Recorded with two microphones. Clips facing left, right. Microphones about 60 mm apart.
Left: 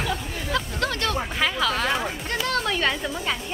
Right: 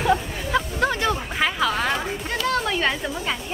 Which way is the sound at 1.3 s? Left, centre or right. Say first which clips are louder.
Right 2 dB; centre.